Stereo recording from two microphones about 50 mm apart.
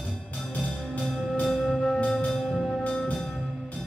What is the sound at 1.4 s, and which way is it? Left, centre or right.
Music, left.